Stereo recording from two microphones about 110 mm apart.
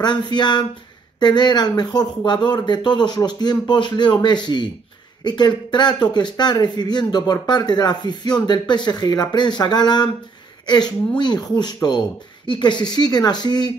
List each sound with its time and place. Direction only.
0.0 s speech: 40° left (ahead or behind)
11.1 s speech: 40° left (ahead or behind)